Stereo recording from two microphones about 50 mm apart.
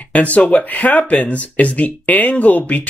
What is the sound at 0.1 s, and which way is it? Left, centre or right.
Speech, left.